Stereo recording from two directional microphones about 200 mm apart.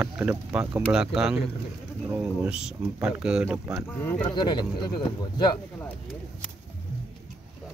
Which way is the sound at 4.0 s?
10° left (ahead or behind).